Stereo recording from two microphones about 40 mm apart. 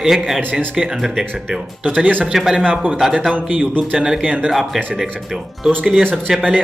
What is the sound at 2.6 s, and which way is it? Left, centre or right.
A man's voice, right.